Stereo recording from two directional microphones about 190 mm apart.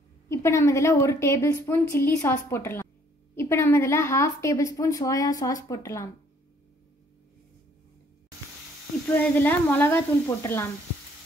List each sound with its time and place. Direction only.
0.3 s a woman's voice: 15° left (ahead or behind)
9.1 s a woman's voice: 10° left (ahead or behind)